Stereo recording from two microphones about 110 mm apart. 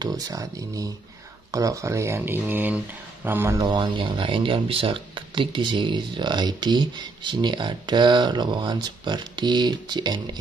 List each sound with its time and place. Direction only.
0.0 s speech: 35° right (ahead or behind)
3.5 s speech: 35° right (ahead or behind)